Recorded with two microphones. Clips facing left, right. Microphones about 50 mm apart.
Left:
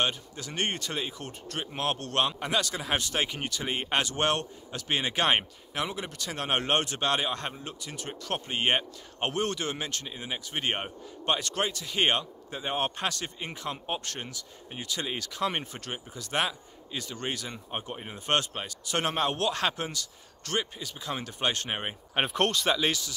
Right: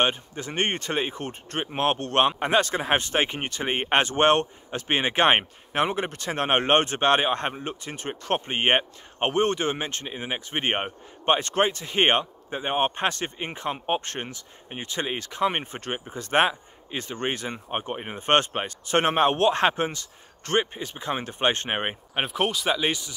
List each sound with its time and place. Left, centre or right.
0.0 s speech: right
22.1 s speech: centre
22.8 s speech: right